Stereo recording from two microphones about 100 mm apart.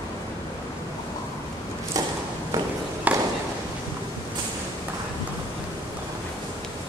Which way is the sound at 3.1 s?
15° right (ahead or behind).